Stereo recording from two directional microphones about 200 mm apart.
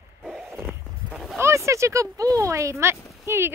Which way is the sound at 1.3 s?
15° right (ahead or behind).